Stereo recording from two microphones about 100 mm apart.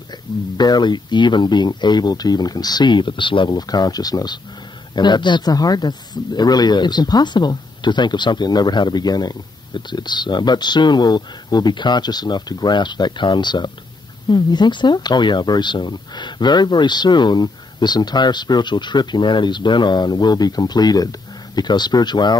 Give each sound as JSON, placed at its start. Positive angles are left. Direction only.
{"t": 0.6, "sound": "speech", "side_deg": 45}